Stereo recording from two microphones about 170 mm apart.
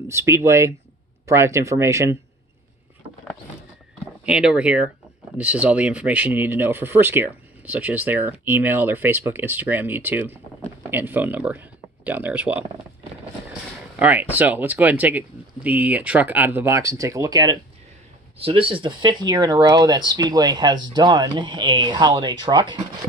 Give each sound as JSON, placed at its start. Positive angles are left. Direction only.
{"t": 0.1, "sound": "speech", "side_deg": -15}
{"t": 4.3, "sound": "speech", "side_deg": -5}
{"t": 13.9, "sound": "speech", "side_deg": -10}